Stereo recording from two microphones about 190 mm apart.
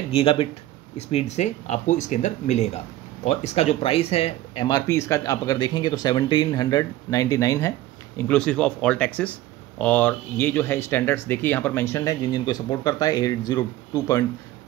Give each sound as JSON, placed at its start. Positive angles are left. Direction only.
{"t": 0.1, "sound": "speech", "side_deg": 30}
{"t": 4.6, "sound": "speech", "side_deg": 20}